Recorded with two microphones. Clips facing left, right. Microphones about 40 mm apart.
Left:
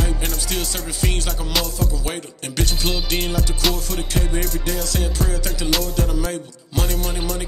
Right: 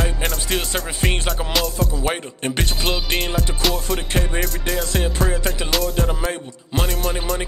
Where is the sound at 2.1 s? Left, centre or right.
Right.